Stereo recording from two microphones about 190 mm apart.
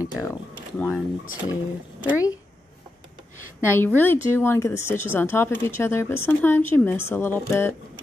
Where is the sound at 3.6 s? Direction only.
10° left (ahead or behind).